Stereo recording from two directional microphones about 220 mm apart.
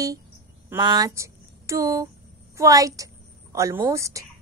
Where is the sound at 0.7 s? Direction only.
15° right (ahead or behind).